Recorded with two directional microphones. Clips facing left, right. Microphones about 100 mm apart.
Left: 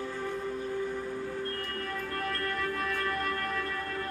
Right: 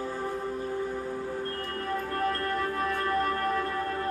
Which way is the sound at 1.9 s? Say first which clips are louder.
Right 7 dB; 30° right (ahead or behind).